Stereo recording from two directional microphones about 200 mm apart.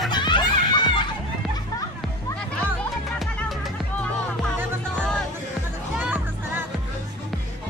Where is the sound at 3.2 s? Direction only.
Centre (ahead or behind).